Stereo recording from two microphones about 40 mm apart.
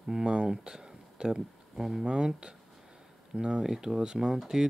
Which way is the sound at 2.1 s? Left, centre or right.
Right.